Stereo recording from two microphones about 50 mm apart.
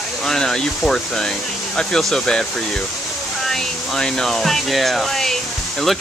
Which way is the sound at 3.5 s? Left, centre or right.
Centre.